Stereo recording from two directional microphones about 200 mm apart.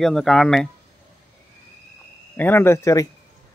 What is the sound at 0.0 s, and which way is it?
Speech, centre (ahead or behind).